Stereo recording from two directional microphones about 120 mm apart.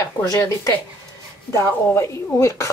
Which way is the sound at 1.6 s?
25° left (ahead or behind).